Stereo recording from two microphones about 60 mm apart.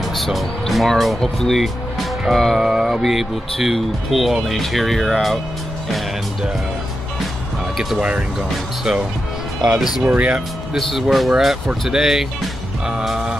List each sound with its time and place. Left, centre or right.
0.1 s speech: centre
8.4 s speech: centre
10.1 s speech: right
10.8 s speech: centre